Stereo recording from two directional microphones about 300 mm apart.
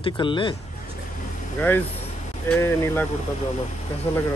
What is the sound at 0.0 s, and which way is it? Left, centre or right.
Speech, centre.